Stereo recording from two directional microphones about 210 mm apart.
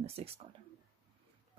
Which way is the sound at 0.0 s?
30° right (ahead or behind).